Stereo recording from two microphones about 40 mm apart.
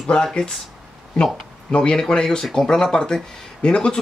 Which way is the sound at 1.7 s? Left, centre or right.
Left.